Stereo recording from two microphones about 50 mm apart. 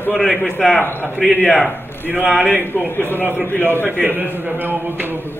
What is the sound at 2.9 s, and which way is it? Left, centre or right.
Speech, left.